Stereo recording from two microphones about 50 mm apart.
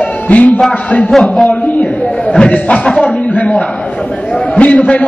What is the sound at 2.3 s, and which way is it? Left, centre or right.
A man's voice, left.